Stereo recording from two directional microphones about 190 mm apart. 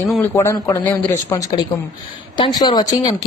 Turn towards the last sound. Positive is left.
turn(degrees=20)  # may be behind; listen again after turning